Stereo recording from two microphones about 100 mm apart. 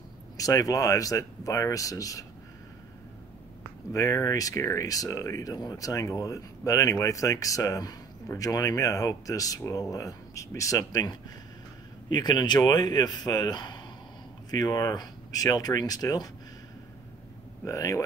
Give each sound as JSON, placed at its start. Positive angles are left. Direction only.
{"t": 0.4, "sound": "speech", "side_deg": 35}
{"t": 3.9, "sound": "speech", "side_deg": 35}
{"t": 17.6, "sound": "speech", "side_deg": 30}